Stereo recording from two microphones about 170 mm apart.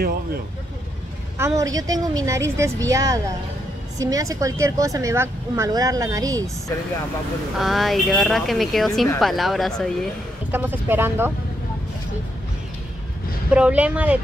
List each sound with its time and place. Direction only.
1.4 s speech: 20° right (ahead or behind)
7.5 s speech: centre (ahead or behind)
10.5 s speech: 10° right (ahead or behind)
13.5 s speech: 5° right (ahead or behind)